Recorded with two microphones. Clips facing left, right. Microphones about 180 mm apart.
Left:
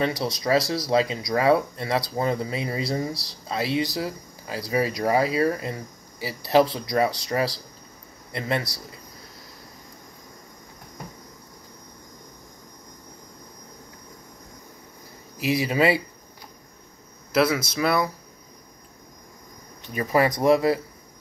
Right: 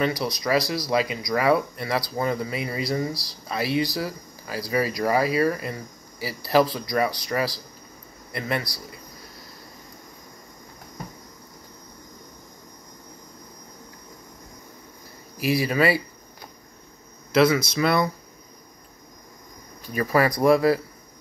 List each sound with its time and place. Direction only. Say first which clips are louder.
0.0 s speech: even; 25° left (ahead or behind)
15.3 s speech: right 1 dB; 20° left (ahead or behind)
17.3 s speech: right 3 dB; 5° left (ahead or behind)
19.9 s speech: even; 20° left (ahead or behind)